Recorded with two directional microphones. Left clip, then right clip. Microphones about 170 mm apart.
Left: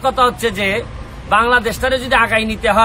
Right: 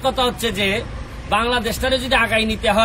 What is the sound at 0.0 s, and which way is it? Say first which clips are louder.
A man's voice: left 5 dB; 20° left (ahead or behind).